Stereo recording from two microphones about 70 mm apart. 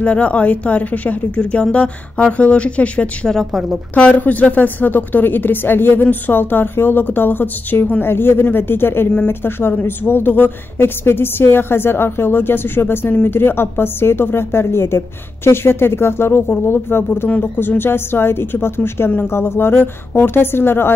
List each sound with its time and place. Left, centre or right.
0.0 s a woman's voice: centre
3.3 s a woman's voice: centre
3.9 s a woman's voice: left